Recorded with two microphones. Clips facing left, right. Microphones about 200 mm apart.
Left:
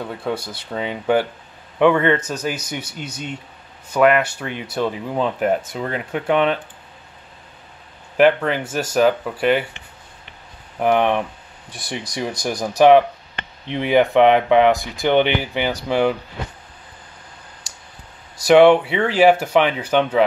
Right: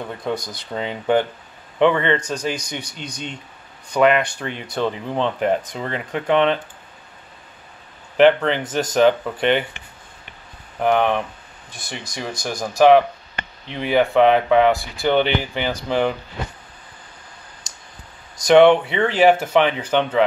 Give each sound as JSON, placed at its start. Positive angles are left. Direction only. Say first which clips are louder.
{"t": 0.5, "sound": "speech", "louder": "left 1 dB", "side_deg": 10}
{"t": 8.2, "sound": "speech", "louder": "right 1 dB", "side_deg": 10}
{"t": 10.8, "sound": "speech", "louder": "left 1 dB", "side_deg": 15}
{"t": 18.4, "sound": "speech", "louder": "left 1 dB", "side_deg": 5}